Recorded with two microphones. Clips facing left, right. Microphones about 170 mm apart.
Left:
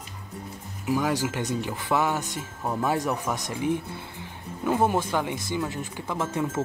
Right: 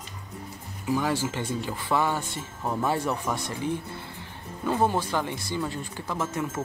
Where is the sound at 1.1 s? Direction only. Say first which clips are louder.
Left 1 dB; 15° left (ahead or behind).